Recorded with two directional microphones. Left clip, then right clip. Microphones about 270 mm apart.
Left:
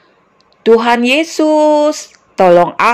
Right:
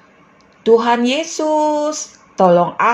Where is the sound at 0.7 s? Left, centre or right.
Left.